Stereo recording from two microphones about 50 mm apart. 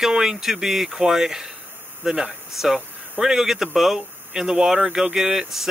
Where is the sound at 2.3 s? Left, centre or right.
Centre.